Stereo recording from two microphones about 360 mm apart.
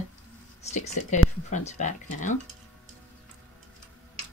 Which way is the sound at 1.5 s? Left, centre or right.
Centre.